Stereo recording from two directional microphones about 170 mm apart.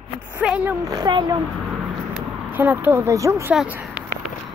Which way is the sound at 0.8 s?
20° right (ahead or behind).